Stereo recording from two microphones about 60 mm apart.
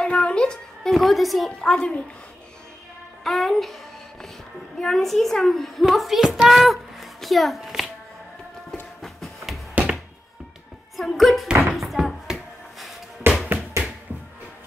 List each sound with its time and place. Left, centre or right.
0.0 s a sound: centre
0.8 s a child's voice: centre
1.6 s a woman's voice: centre
3.3 s a child's voice: centre
4.7 s a child's voice: centre
6.4 s hands: centre
9.0 s music: centre
11.0 s a child's voice: centre
11.7 s a sound: centre
13.2 s a sound: right